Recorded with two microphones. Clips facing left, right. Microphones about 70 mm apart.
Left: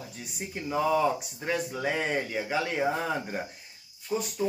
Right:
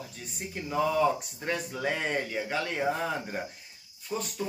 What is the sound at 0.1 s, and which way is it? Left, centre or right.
Speech, centre.